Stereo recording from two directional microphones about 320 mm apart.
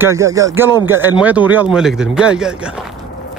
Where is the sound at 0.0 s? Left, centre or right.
Centre.